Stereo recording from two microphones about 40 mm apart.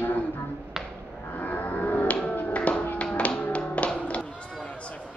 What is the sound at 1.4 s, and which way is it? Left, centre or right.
Cattle, left.